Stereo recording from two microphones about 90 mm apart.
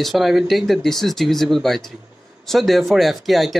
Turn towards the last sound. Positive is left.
turn(degrees=0)  # may be behind; listen again after turning